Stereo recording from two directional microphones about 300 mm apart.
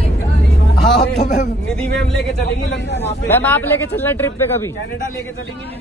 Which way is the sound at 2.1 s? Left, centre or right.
Left.